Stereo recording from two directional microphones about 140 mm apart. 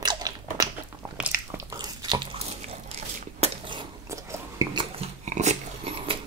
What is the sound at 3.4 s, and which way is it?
Crushing, 35° right (ahead or behind).